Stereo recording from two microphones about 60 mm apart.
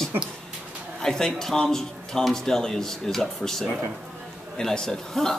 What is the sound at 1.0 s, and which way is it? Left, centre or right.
A man's voice, centre.